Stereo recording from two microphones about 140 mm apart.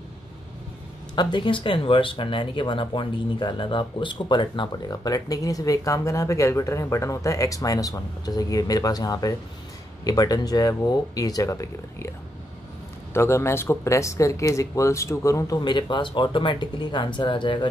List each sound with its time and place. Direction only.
1.1 s speech: 35° left (ahead or behind)
13.1 s speech: 20° left (ahead or behind); by 17.6 s 35° left (ahead or behind)